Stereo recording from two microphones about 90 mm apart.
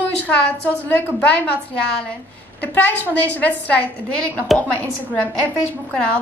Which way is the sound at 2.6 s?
20° left (ahead or behind).